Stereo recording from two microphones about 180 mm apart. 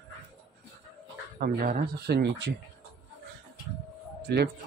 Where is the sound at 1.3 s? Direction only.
55° right (ahead or behind); by 2.5 s 70° right (ahead or behind).